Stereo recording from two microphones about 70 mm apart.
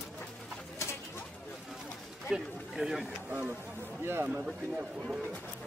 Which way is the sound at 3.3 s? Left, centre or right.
Right.